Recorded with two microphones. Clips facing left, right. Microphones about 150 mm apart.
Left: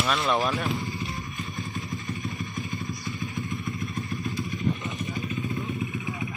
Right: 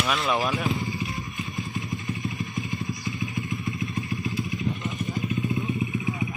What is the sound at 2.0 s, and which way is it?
Vehicle, 20° right (ahead or behind).